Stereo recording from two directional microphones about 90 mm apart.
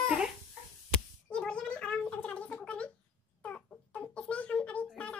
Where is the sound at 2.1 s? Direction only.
15° left (ahead or behind).